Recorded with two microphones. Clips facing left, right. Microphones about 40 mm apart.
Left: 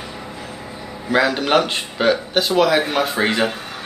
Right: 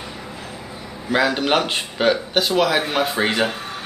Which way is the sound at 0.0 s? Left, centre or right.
Centre.